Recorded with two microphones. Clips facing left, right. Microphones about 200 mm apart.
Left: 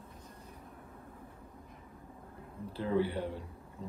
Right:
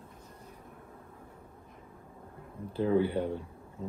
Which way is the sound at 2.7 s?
25° right (ahead or behind).